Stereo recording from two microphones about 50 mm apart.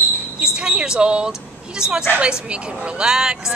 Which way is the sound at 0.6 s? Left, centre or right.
Centre.